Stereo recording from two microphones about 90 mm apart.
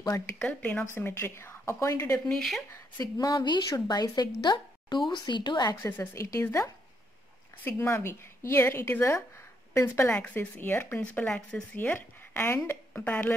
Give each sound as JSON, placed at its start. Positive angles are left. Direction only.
{"t": 0.4, "sound": "a woman's voice", "side_deg": 15}
{"t": 2.1, "sound": "speech", "side_deg": 15}
{"t": 3.2, "sound": "a woman's voice", "side_deg": 50}
{"t": 5.8, "sound": "a woman's voice", "side_deg": 25}
{"t": 12.4, "sound": "speech", "side_deg": 30}
{"t": 12.9, "sound": "speech", "side_deg": 20}